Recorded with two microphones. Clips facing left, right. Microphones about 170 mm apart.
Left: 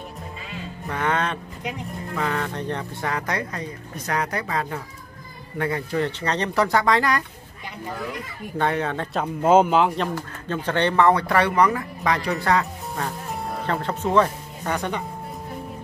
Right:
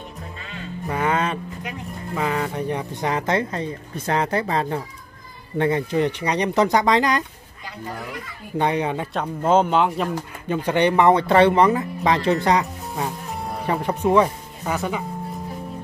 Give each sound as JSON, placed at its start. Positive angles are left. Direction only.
{"t": 0.8, "sound": "a sound", "side_deg": -10}
{"t": 2.1, "sound": "speech", "side_deg": -5}
{"t": 8.5, "sound": "speech", "side_deg": -15}
{"t": 9.1, "sound": "a man's voice", "side_deg": 5}
{"t": 10.1, "sound": "speech", "side_deg": -15}